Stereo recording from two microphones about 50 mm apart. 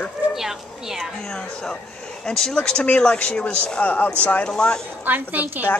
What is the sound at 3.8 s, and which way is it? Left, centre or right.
Speech, left.